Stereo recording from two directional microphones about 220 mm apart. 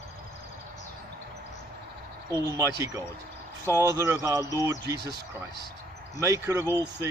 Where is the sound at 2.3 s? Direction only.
15° right (ahead or behind).